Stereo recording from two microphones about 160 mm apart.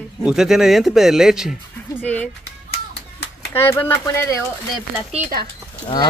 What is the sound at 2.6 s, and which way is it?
Clapping, 90° left.